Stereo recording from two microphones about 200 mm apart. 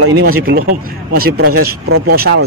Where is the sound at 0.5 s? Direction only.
50° right (ahead or behind).